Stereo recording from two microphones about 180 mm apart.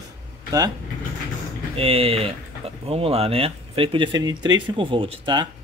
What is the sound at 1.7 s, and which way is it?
Speech, 30° right (ahead or behind).